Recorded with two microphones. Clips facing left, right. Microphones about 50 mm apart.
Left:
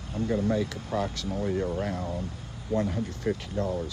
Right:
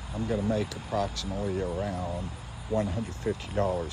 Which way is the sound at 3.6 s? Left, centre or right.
Right.